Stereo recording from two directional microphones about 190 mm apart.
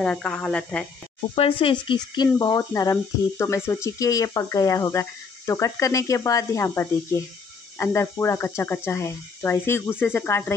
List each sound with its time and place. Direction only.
0.0 s speech: 5° left (ahead or behind)
1.3 s speech: 30° left (ahead or behind); by 10.5 s 10° left (ahead or behind)